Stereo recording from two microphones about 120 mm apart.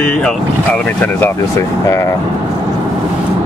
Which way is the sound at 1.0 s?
20° left (ahead or behind).